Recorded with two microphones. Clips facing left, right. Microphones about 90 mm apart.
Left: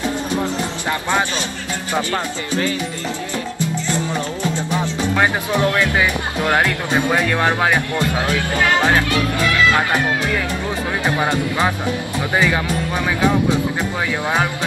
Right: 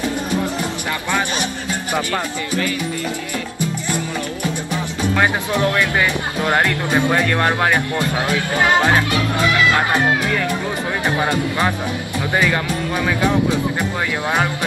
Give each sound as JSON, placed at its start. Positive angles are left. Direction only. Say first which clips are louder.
{"t": 0.8, "sound": "speech", "louder": "left 3 dB", "side_deg": 20}
{"t": 5.1, "sound": "speech", "louder": "even", "side_deg": 20}
{"t": 7.9, "sound": "speech", "louder": "even", "side_deg": -20}
{"t": 11.1, "sound": "speech", "louder": "even", "side_deg": 20}